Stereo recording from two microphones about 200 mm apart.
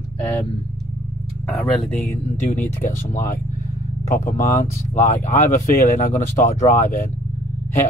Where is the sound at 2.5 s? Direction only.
40° left (ahead or behind).